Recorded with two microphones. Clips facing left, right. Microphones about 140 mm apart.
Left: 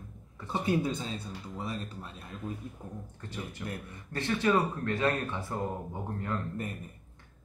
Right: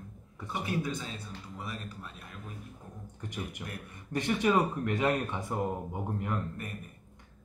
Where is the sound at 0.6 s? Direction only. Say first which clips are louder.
Left 5 dB; 30° left (ahead or behind).